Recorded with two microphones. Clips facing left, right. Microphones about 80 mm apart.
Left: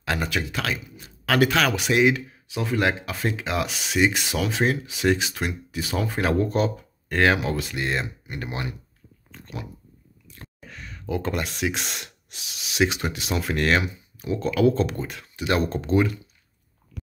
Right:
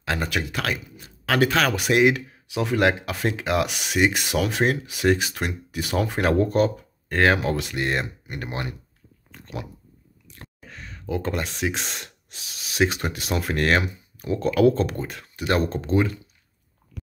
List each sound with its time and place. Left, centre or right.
0.0 s speech: right
0.3 s speech: right
1.2 s speech: right
5.0 s speech: right
7.1 s speech: right
9.3 s pig: right
10.7 s speech: right